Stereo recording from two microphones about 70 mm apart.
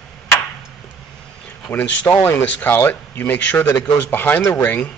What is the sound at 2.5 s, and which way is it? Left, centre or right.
Speech, left.